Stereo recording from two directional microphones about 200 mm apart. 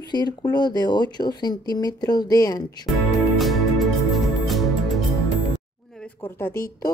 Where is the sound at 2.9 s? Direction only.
Centre (ahead or behind).